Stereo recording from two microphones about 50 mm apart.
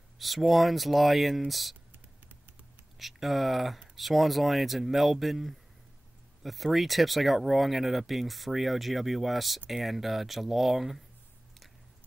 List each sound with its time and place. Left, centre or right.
0.2 s speech: centre
3.0 s speech: centre